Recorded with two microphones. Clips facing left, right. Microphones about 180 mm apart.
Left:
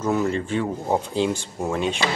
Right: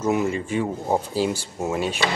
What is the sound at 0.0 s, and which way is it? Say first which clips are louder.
Speech: even; 10° right (ahead or behind).